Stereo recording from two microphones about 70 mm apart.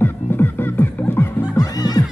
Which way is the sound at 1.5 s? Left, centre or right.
Left.